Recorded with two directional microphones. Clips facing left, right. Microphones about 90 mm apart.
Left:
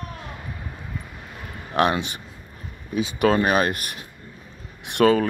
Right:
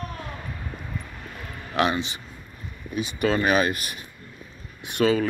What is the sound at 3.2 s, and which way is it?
Speech, 45° left (ahead or behind).